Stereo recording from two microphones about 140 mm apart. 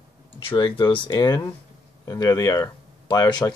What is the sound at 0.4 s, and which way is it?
Speech, 35° left (ahead or behind).